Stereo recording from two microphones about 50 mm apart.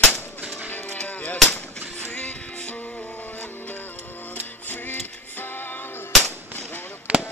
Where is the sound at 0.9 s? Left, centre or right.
Left.